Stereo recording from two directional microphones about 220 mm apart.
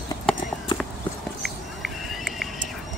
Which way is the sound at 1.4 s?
Centre (ahead or behind).